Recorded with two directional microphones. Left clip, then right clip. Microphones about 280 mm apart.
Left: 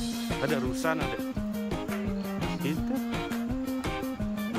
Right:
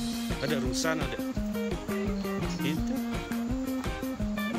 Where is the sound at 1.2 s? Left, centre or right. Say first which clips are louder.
Right 1 dB; centre.